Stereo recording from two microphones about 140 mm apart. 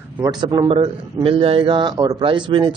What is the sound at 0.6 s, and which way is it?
A man's voice, 40° right (ahead or behind).